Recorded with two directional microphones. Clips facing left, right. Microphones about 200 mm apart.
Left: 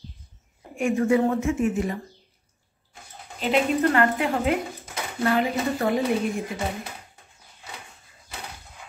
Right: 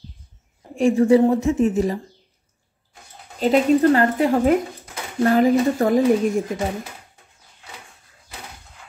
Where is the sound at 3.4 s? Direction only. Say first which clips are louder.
Right 6 dB; 35° right (ahead or behind).